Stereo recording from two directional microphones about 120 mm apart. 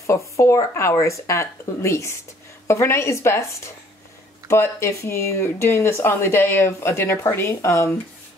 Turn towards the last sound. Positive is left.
turn(degrees=20)  # may be behind; listen again after turning